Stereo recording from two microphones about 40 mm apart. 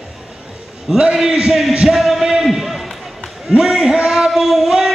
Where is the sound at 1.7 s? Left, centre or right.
Centre.